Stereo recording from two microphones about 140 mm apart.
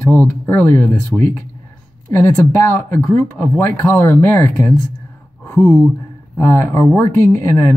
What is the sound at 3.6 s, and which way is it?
Speech, 15° left (ahead or behind).